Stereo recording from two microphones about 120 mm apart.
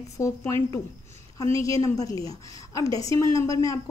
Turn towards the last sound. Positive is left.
turn(degrees=30)  # may be behind; listen again after turning